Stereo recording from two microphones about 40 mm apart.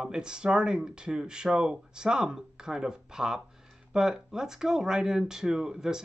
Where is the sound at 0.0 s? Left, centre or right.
Centre.